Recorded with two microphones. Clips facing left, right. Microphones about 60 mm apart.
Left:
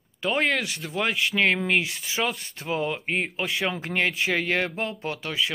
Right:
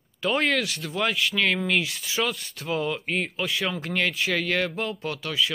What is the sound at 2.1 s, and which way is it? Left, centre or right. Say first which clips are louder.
Speech: even; centre.